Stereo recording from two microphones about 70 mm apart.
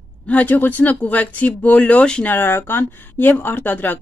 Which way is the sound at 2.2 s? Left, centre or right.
Left.